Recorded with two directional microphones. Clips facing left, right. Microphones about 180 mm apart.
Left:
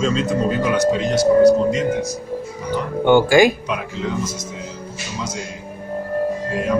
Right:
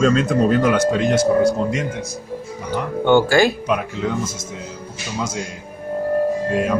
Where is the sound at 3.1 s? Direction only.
15° left (ahead or behind).